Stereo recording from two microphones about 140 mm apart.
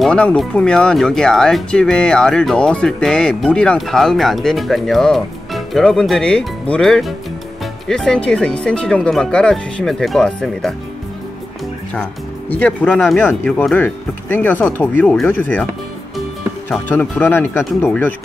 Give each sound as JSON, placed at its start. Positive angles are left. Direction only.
{"t": 0.0, "sound": "speech", "side_deg": 5}
{"t": 11.9, "sound": "speech", "side_deg": 10}
{"t": 16.9, "sound": "speech", "side_deg": 15}